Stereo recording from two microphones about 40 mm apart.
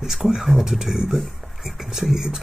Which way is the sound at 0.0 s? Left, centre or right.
Centre.